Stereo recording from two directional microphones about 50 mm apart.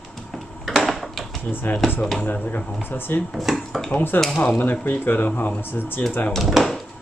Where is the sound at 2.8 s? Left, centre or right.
Left.